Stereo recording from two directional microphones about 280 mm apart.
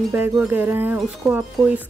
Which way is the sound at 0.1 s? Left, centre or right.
Centre.